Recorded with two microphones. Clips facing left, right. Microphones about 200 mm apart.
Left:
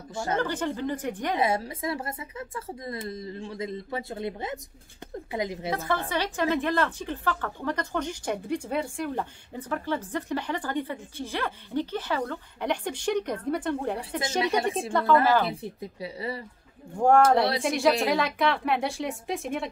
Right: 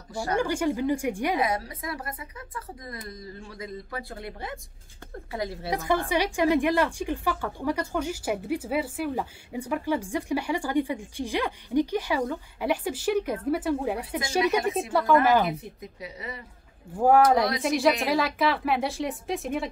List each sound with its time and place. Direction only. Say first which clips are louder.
0.1 s speech: right 1 dB; 20° left (ahead or behind)
0.4 s a woman's voice: right 6 dB; 10° right (ahead or behind)
1.4 s a woman's voice: left 2 dB; 25° left (ahead or behind)
5.7 s a woman's voice: right 6 dB; 15° right (ahead or behind)
14.6 s a woman's voice: right 1 dB; 30° left (ahead or behind)
14.9 s a woman's voice: even; 5° right (ahead or behind)
15.4 s speech: even; 30° left (ahead or behind)
16.9 s speech: even; 5° right (ahead or behind)